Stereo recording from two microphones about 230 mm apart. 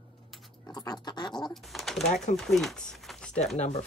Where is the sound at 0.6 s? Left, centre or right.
Centre.